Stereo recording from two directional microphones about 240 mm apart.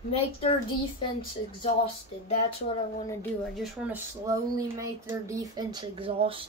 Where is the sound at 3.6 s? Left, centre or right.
Centre.